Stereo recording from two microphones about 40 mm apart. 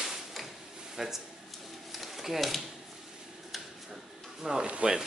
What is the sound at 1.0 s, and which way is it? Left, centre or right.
Speech, centre.